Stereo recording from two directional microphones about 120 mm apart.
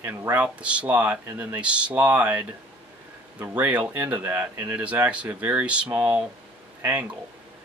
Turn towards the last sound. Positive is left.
turn(degrees=-15)  # may be behind; listen again after turning